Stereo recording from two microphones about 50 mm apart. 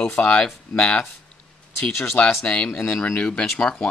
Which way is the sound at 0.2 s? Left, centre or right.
Centre.